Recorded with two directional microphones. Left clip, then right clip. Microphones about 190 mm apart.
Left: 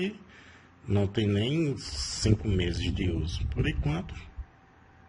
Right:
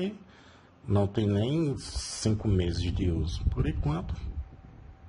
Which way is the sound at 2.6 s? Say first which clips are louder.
Left 1 dB; 10° right (ahead or behind).